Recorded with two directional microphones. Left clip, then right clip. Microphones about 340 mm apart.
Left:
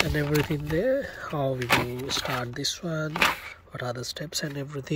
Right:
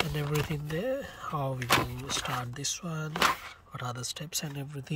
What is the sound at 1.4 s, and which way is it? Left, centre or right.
Speech, centre.